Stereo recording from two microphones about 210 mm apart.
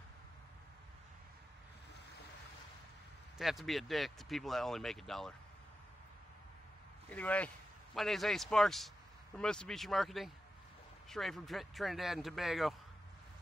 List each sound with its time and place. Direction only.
3.3 s speech: centre (ahead or behind)
7.1 s a man's voice: 5° left (ahead or behind)